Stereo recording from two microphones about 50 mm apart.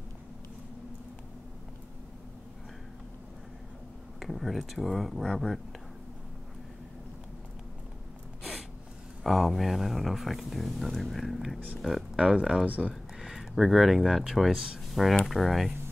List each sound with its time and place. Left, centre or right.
4.2 s speech: centre
9.2 s speech: centre
12.2 s speech: centre
12.6 s speech: right
13.2 s speech: centre
15.2 s speech: centre